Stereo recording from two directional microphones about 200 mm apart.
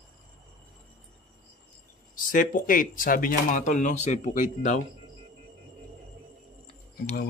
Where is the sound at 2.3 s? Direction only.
45° left (ahead or behind).